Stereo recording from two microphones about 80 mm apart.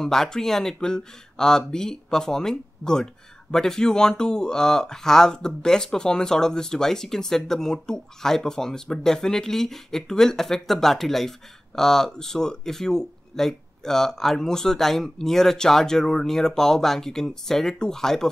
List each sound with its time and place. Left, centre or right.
0.0 s speech: centre